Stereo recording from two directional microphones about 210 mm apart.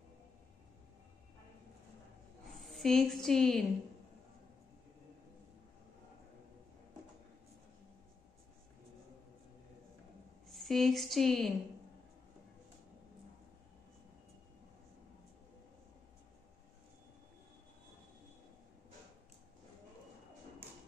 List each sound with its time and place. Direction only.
2.6 s a woman's voice: centre (ahead or behind)
10.5 s a woman's voice: centre (ahead or behind)